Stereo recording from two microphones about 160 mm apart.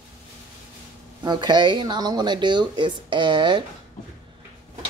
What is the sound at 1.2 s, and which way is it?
Speech, 25° right (ahead or behind).